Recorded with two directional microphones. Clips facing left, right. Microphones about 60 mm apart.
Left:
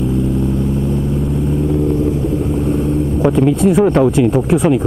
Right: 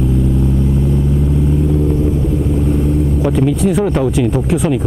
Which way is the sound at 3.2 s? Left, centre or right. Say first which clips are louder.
Left 4 dB; left.